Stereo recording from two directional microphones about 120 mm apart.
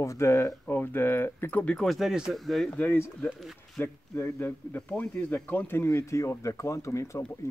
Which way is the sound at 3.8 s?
20° left (ahead or behind).